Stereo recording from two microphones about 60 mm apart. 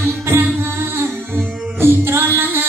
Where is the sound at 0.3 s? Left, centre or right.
Right.